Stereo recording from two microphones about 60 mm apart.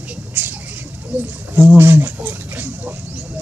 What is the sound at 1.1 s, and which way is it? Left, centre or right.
Speech, right.